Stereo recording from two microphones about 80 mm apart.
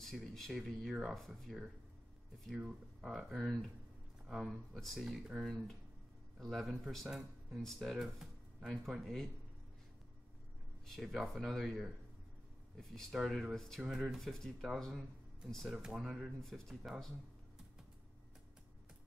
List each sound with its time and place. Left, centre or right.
0.0 s speech: centre
10.9 s speech: centre